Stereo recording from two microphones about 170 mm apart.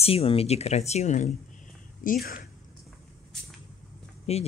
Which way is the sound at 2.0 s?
60° left (ahead or behind).